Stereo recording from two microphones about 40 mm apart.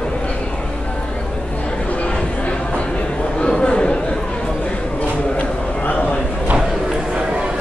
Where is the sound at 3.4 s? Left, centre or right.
Centre.